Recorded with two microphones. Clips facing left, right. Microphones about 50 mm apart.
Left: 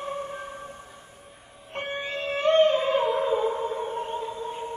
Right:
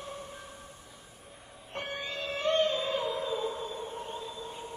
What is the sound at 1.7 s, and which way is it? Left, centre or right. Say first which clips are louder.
Music: left 6 dB; left.